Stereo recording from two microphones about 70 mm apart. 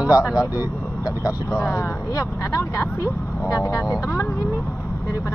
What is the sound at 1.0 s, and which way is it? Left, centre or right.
Speech, left.